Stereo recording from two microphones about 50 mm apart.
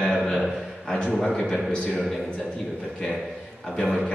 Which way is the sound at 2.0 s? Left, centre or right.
Centre.